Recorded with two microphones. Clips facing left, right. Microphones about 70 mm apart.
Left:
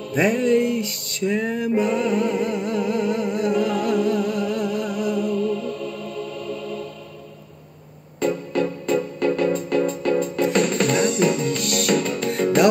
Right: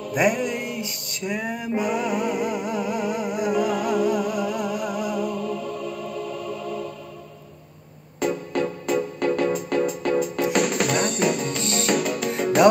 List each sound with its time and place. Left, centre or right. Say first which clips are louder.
0.1 s music: left 4 dB; centre
8.2 s music: left 2 dB; centre
11.4 s music: left 3 dB; right
11.9 s music: left 1 dB; centre